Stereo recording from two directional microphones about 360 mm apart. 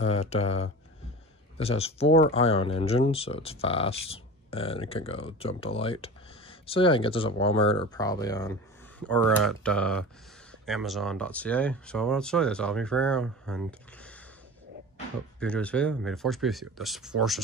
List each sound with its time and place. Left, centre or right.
0.0 s speech: centre
15.4 s speech: centre